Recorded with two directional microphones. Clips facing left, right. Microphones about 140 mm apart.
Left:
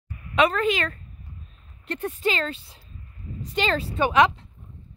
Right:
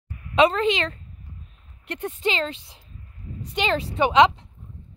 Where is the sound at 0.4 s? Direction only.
25° right (ahead or behind).